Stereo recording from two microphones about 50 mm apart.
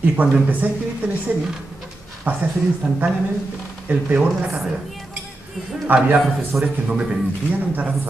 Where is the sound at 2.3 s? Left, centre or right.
Right.